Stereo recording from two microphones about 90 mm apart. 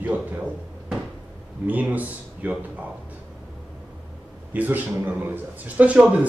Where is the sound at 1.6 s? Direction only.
20° right (ahead or behind).